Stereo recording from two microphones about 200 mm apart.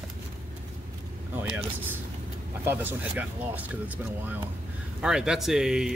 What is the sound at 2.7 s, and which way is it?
Speech, 10° right (ahead or behind).